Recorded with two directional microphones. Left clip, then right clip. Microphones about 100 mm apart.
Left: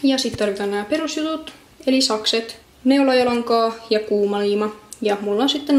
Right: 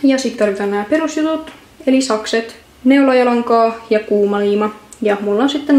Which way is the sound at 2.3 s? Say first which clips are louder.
Right 5 dB; 5° left (ahead or behind).